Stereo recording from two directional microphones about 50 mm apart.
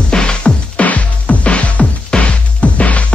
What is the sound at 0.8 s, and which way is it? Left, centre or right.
Music, left.